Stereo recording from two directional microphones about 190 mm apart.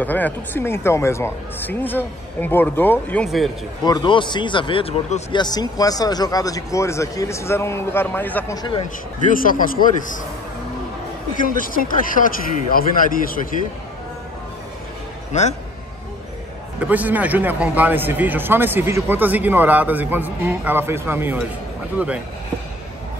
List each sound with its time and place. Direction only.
0.0 s a man's voice: 10° left (ahead or behind)
3.8 s speech: 20° left (ahead or behind)
9.3 s a man's voice: 45° left (ahead or behind)
11.4 s a man's voice: 45° left (ahead or behind)
16.8 s speech: 10° right (ahead or behind)